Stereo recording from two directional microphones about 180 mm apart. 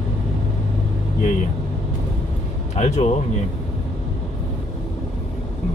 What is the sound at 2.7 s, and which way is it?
Speech, 40° left (ahead or behind).